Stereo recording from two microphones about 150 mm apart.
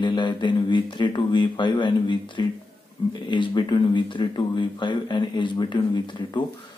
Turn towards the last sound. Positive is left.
turn(degrees=30)  # may be behind; listen again after turning